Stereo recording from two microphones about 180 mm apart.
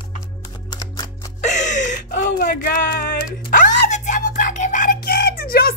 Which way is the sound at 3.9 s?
45° left (ahead or behind).